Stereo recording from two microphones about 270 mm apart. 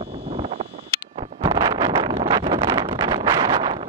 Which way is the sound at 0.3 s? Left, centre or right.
Right.